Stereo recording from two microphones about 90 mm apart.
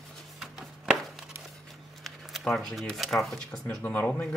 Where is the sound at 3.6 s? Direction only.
20° left (ahead or behind).